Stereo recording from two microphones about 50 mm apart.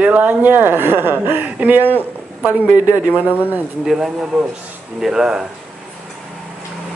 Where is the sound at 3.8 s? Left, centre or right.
Centre.